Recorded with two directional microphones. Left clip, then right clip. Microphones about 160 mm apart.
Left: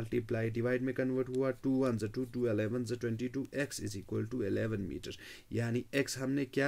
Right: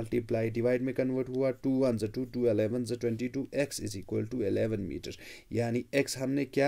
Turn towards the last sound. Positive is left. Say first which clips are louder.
# right 4 dB
turn(degrees=-20)  # may be behind; listen again after turning